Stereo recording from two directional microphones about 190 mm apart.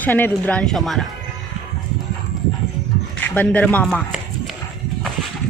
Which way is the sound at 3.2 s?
10° left (ahead or behind).